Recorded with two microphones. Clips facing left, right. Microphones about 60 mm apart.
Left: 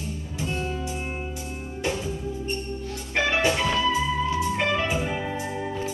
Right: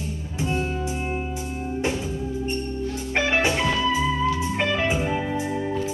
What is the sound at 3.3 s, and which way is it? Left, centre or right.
Music, centre.